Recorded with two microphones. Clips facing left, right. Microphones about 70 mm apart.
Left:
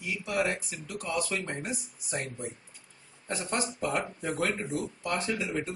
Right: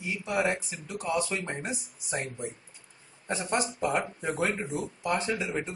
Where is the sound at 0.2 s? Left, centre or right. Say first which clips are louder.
Right 2 dB; right.